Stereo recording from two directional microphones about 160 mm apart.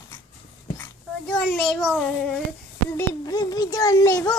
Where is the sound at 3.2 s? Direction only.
25° left (ahead or behind).